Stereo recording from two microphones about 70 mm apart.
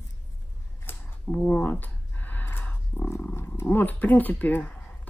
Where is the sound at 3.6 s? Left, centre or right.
Left.